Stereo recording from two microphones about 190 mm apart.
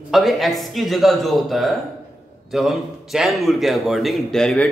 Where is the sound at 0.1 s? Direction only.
Centre (ahead or behind).